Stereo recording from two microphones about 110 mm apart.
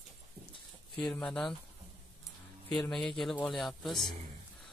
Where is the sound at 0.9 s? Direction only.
10° left (ahead or behind).